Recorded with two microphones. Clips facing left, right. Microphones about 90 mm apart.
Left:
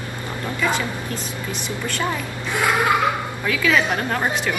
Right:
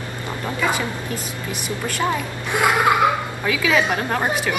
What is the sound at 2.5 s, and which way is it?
Speech, 20° right (ahead or behind).